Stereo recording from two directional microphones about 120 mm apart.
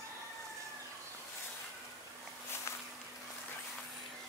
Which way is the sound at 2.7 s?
25° left (ahead or behind).